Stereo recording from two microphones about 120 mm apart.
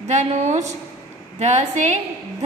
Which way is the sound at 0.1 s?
70° right (ahead or behind).